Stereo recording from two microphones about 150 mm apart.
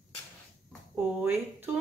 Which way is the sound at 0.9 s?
10° right (ahead or behind).